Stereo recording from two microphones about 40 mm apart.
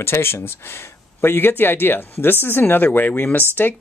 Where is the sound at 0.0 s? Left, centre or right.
Left.